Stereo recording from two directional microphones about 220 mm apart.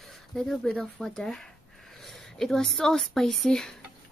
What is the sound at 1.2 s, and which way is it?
A woman's voice, centre (ahead or behind).